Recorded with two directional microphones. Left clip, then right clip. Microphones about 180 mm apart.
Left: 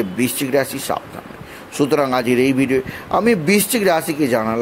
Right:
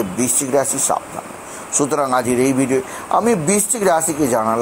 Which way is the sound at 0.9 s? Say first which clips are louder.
Right 3 dB; 30° left (ahead or behind).